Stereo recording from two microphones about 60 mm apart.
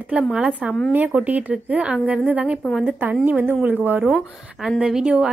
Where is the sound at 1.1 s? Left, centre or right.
Right.